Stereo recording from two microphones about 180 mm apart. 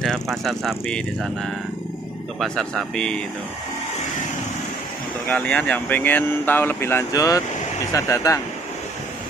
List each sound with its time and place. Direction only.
0.0 s speech: centre (ahead or behind)
5.3 s speech: 10° left (ahead or behind)